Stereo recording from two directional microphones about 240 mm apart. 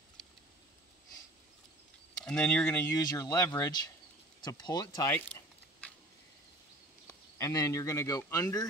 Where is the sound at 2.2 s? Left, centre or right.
Centre.